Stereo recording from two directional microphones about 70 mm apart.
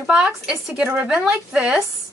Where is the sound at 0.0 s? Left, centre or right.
Centre.